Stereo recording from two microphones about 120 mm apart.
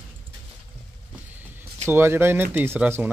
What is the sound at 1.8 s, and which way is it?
Speech, 20° right (ahead or behind).